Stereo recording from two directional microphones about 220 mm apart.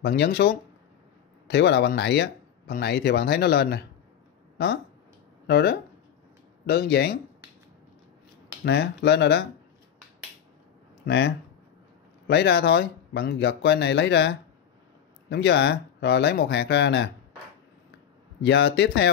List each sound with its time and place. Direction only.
0.0 s speech: 50° left (ahead or behind)
5.5 s speech: 50° left (ahead or behind)
8.6 s speech: 50° left (ahead or behind)
11.1 s speech: 50° left (ahead or behind)
18.4 s speech: 55° left (ahead or behind)